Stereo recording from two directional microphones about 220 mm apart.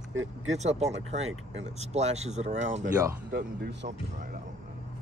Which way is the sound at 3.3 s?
50° right (ahead or behind).